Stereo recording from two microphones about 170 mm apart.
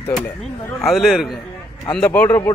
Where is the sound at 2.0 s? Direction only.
10° left (ahead or behind).